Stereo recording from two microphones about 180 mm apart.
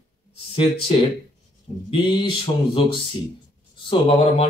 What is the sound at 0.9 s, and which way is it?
Speech, 30° left (ahead or behind).